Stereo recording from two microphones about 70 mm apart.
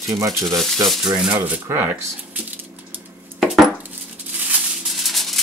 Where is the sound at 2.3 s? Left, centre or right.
Right.